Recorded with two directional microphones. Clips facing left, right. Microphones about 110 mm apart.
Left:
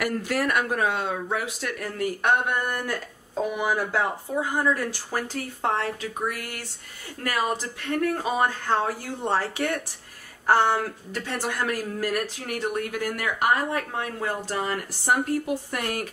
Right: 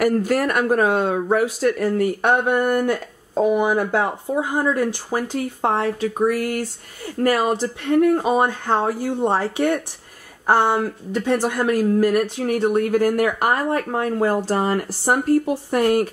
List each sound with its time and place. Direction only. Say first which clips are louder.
0.0 s speech: right 7 dB; 45° right (ahead or behind)
2.8 s speech: right 9 dB; 20° right (ahead or behind)
5.9 s speech: right 10 dB; 40° right (ahead or behind)
7.8 s speech: right 9 dB; 20° right (ahead or behind)
12.6 s speech: right 10 dB; 40° right (ahead or behind)